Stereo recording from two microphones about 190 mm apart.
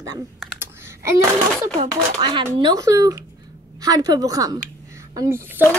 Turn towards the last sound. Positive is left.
turn(degrees=-10)  # may be behind; listen again after turning